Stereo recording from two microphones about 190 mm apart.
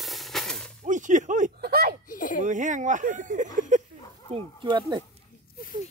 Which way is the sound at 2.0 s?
45° left (ahead or behind).